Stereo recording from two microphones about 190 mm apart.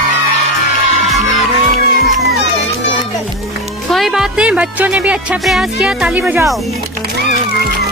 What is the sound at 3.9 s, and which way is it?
Speech, centre (ahead or behind).